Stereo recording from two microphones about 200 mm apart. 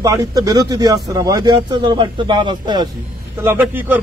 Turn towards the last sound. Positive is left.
turn(degrees=-10)  # may be behind; listen again after turning